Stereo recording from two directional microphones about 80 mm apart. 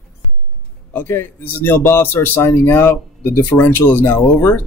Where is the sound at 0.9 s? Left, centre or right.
Left.